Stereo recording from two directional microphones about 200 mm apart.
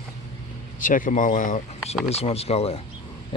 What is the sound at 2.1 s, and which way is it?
Speech, 30° left (ahead or behind).